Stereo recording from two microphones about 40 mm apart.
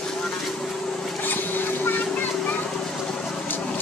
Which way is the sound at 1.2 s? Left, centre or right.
Left.